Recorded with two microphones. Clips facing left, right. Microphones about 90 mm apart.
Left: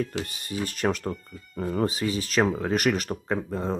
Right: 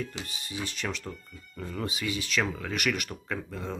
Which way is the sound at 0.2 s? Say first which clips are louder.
Left 6 dB; 50° left (ahead or behind).